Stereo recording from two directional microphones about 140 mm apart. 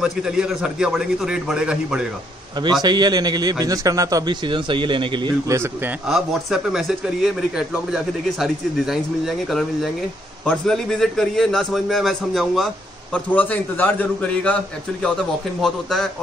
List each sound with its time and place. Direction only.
0.0 s speech: 5° right (ahead or behind)
2.5 s a man's voice: 30° right (ahead or behind)
5.5 s a man's voice: 15° right (ahead or behind)
6.0 s speech: 5° right (ahead or behind)
13.1 s a man's voice: 10° left (ahead or behind)